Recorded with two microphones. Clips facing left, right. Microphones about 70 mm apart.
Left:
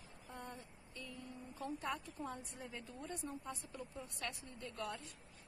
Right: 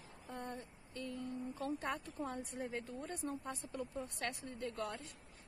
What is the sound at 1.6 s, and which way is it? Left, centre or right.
A woman's voice, right.